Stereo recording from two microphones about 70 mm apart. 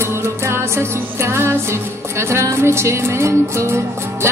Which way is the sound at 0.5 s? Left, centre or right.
Right.